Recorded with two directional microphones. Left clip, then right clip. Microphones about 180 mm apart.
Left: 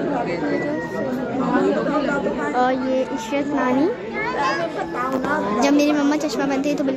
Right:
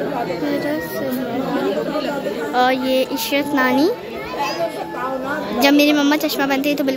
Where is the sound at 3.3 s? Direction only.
10° right (ahead or behind).